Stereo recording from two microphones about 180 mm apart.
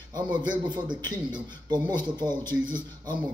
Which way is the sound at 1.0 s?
25° right (ahead or behind).